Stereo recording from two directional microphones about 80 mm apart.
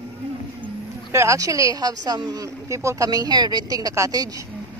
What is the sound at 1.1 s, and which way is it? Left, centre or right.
Speech, right.